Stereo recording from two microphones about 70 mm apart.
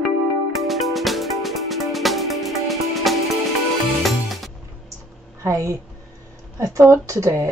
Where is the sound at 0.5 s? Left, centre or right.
Centre.